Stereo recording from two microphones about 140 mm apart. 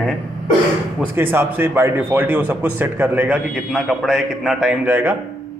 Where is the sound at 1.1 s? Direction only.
15° right (ahead or behind).